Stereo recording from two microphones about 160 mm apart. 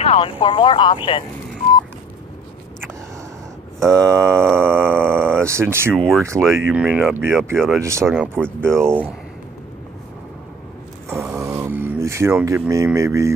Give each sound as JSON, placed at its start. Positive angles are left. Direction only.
{"t": 0.0, "sound": "speech", "side_deg": 35}
{"t": 3.8, "sound": "speech", "side_deg": -20}
{"t": 4.6, "sound": "a sound", "side_deg": -15}
{"t": 5.9, "sound": "speech", "side_deg": 5}
{"t": 6.7, "sound": "speech", "side_deg": -5}
{"t": 7.5, "sound": "speech", "side_deg": 0}
{"t": 7.8, "sound": "speech", "side_deg": -20}
{"t": 11.3, "sound": "a sound", "side_deg": -20}